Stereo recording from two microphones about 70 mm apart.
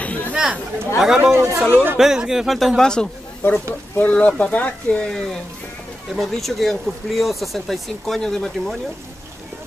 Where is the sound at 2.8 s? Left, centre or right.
Centre.